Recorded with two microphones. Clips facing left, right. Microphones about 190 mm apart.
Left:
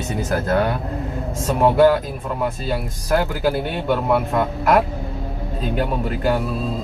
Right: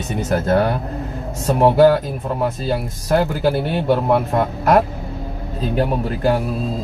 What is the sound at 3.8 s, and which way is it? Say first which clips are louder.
A man's voice: right 2 dB; 30° right (ahead or behind).